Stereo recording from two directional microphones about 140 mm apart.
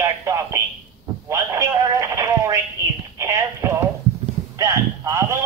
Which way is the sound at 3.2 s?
20° right (ahead or behind).